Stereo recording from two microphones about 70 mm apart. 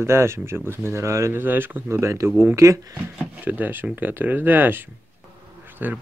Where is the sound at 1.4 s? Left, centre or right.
Right.